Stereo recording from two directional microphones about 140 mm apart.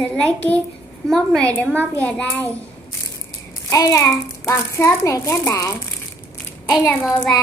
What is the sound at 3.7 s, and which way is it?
A child's voice, 20° left (ahead or behind).